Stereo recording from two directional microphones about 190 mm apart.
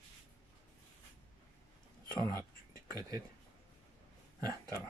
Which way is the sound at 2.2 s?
20° right (ahead or behind).